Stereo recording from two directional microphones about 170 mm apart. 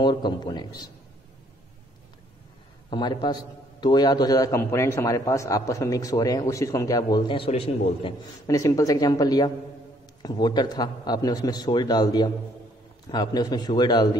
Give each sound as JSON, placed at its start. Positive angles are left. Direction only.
{"t": 0.0, "sound": "a man's voice", "side_deg": 25}
{"t": 2.9, "sound": "a man's voice", "side_deg": 25}
{"t": 8.5, "sound": "a man's voice", "side_deg": 20}